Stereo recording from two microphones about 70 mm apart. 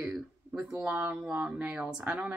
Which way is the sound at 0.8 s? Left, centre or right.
Right.